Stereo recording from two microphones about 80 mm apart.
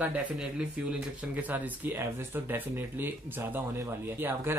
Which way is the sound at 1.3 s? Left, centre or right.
Right.